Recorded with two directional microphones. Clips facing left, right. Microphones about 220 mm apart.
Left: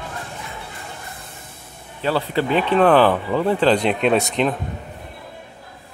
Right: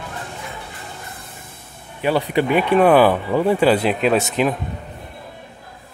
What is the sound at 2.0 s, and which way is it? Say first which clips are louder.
Speech: right 2 dB; 15° right (ahead or behind).